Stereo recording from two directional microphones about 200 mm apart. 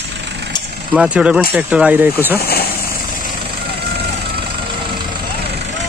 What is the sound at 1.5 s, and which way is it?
Speech, 5° right (ahead or behind).